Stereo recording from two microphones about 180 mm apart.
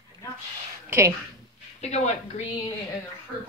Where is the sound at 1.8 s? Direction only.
40° left (ahead or behind).